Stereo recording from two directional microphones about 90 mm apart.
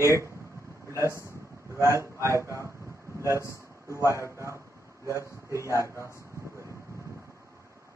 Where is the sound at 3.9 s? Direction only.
35° right (ahead or behind).